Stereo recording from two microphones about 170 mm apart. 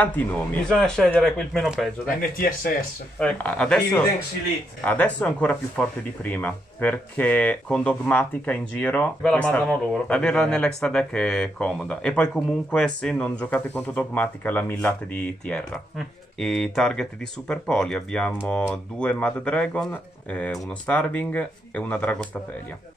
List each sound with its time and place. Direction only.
0.0 s speech: 10° left (ahead or behind)
2.0 s speech: 60° left (ahead or behind)
3.2 s speech: 5° left (ahead or behind)